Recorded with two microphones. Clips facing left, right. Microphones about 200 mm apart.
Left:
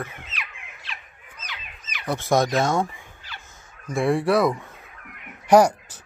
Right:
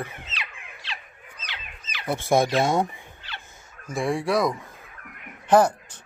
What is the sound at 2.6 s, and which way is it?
Fowl, 20° right (ahead or behind).